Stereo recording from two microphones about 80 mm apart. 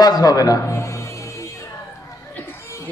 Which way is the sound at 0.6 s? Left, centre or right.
Left.